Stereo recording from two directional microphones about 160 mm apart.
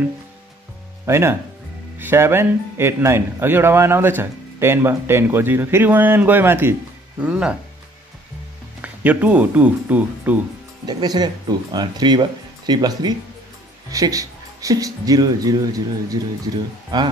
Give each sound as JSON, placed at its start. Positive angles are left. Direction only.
{"t": 1.0, "sound": "speech", "side_deg": -15}
{"t": 8.8, "sound": "speech", "side_deg": -10}
{"t": 10.9, "sound": "speech", "side_deg": -25}